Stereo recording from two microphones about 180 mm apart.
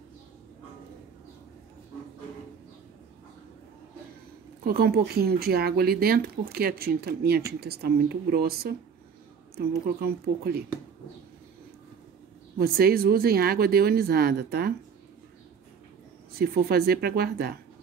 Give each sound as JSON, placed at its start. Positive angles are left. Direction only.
{"t": 4.6, "sound": "speech", "side_deg": -60}
{"t": 12.5, "sound": "speech", "side_deg": -60}
{"t": 16.3, "sound": "speech", "side_deg": -60}